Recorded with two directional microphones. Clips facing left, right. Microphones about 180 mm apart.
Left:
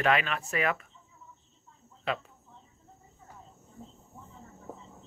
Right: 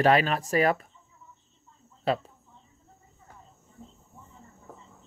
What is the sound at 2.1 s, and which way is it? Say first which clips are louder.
Speech: right 6 dB; 35° right (ahead or behind).